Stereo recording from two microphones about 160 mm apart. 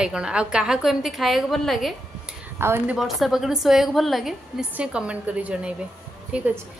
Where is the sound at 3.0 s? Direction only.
Centre (ahead or behind).